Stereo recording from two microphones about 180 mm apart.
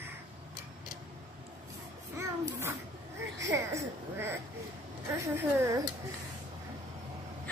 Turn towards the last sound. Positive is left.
turn(degrees=-15)  # may be behind; listen again after turning